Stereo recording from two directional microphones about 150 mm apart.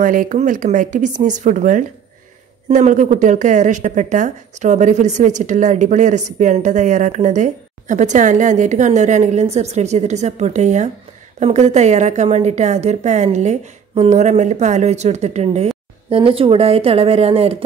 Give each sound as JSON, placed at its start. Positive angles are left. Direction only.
{"t": 0.0, "sound": "speech", "side_deg": -60}